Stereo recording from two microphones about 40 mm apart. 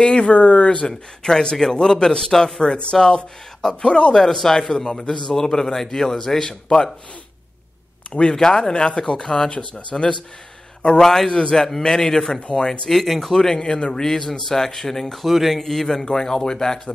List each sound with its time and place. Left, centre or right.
0.0 s a man's voice: left
4.1 s a man's voice: centre
8.1 s speech: left
8.4 s a man's voice: centre
12.4 s speech: left
12.8 s a man's voice: centre
13.3 s a man's voice: centre
15.2 s a man's voice: centre